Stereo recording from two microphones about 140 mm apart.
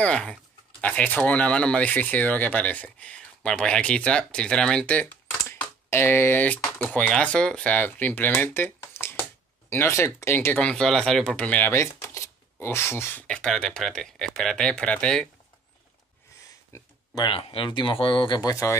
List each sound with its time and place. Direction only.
0.0 s speech: 5° left (ahead or behind)
16.7 s a sound: 25° left (ahead or behind)
17.3 s speech: 40° left (ahead or behind); by 18.8 s 25° left (ahead or behind)